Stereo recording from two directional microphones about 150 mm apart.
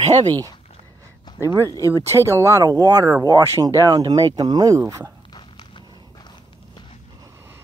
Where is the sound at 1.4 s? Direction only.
20° right (ahead or behind).